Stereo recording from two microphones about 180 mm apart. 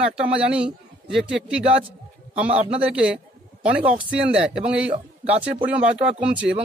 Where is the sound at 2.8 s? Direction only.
5° right (ahead or behind).